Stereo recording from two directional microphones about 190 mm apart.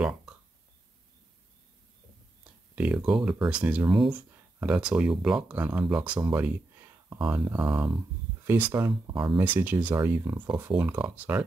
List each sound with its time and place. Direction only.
2.7 s speech: 5° right (ahead or behind)
10.4 s speech: 25° right (ahead or behind)
11.1 s speech: 5° right (ahead or behind)